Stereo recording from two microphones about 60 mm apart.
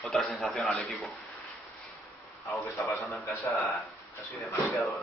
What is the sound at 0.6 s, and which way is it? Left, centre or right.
Speech, centre.